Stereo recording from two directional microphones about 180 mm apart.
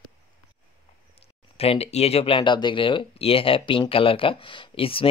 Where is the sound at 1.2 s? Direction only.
35° left (ahead or behind).